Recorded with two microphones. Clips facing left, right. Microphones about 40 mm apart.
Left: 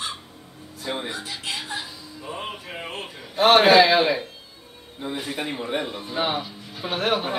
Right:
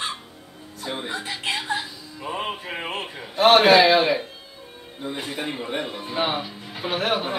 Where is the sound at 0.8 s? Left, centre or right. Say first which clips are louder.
Left 1 dB; centre.